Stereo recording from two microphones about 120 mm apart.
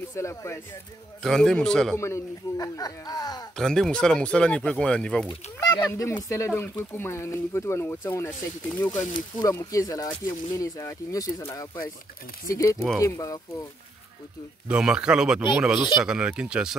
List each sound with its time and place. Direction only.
0.1 s speech: 25° left (ahead or behind)
1.2 s a man's voice: 5° left (ahead or behind)
2.0 s speech: 25° left (ahead or behind)
3.5 s speech: 5° left (ahead or behind)
5.6 s speech: 25° left (ahead or behind)
9.1 s speech: 30° left (ahead or behind)
14.7 s speech: 5° right (ahead or behind)